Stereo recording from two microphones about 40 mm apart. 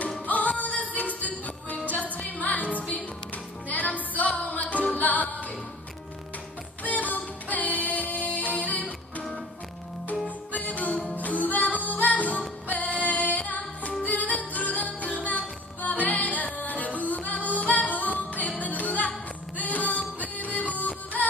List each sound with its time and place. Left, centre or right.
0.3 s music: left
6.8 s music: left
10.2 s music: left